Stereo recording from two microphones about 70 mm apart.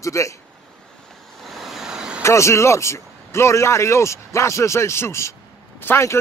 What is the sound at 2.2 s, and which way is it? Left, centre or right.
A man's voice, left.